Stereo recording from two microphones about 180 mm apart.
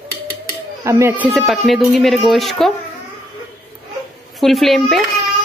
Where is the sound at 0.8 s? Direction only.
15° right (ahead or behind).